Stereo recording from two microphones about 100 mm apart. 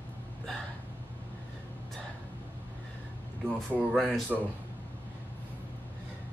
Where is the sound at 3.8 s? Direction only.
5° right (ahead or behind).